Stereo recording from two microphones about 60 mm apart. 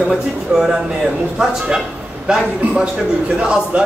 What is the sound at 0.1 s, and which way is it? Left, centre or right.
Speech, centre.